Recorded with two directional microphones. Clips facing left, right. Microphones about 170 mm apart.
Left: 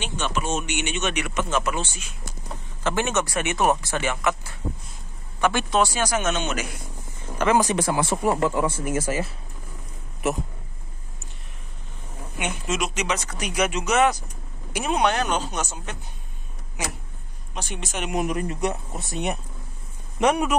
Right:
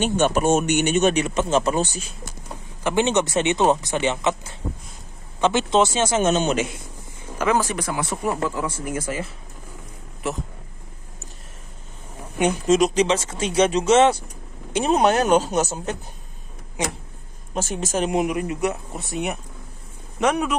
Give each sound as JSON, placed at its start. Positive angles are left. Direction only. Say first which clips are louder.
{"t": 0.0, "sound": "speech", "louder": "right 9 dB", "side_deg": -45}
{"t": 2.8, "sound": "speech", "louder": "right 4 dB", "side_deg": -20}
{"t": 7.4, "sound": "a sound", "louder": "even", "side_deg": -5}
{"t": 7.7, "sound": "speech", "louder": "left 3 dB", "side_deg": 30}
{"t": 12.4, "sound": "speech", "louder": "right 10 dB", "side_deg": -35}
{"t": 14.9, "sound": "speech", "louder": "right 5 dB", "side_deg": -45}
{"t": 17.6, "sound": "speech", "louder": "right 7 dB", "side_deg": -45}
{"t": 18.1, "sound": "speech", "louder": "right 3 dB", "side_deg": -10}